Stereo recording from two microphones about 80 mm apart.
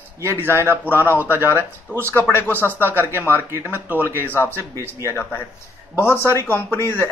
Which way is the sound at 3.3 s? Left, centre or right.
Left.